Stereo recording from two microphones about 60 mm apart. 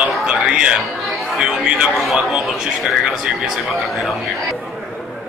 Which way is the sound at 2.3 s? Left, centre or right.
Centre.